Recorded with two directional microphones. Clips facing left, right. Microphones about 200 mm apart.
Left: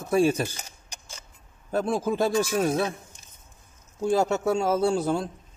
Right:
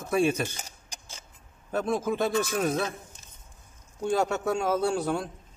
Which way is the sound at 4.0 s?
25° left (ahead or behind).